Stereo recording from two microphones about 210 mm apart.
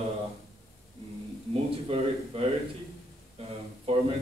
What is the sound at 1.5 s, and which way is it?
Speech, 30° right (ahead or behind).